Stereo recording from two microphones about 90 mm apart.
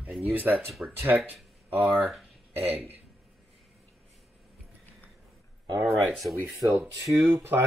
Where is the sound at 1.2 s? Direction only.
20° right (ahead or behind).